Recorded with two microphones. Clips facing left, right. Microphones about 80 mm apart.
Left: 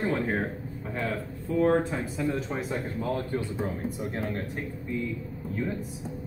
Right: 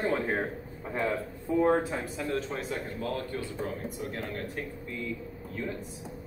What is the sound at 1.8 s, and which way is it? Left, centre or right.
Speech, centre.